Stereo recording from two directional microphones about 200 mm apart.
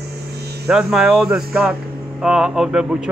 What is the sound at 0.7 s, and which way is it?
A man's voice, 5° right (ahead or behind).